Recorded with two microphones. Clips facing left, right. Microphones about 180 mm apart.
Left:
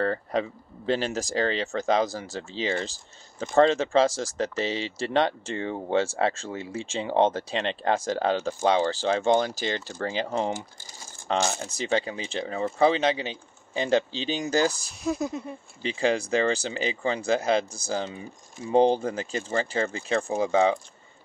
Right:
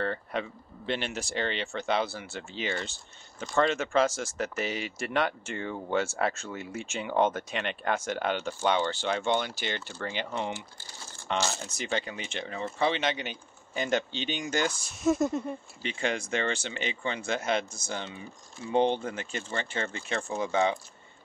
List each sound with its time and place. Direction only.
0.0 s speech: 35° left (ahead or behind)
15.0 s speech: centre (ahead or behind)
15.8 s speech: 35° left (ahead or behind)